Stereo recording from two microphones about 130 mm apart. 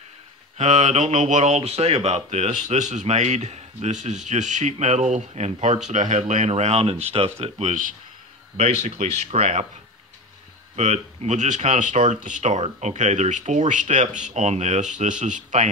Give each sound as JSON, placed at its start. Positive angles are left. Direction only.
{"t": 0.6, "sound": "speech", "side_deg": -60}
{"t": 10.8, "sound": "speech", "side_deg": -65}